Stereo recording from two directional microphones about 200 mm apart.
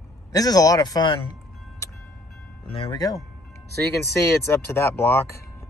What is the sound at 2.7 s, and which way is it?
Speech, 25° left (ahead or behind).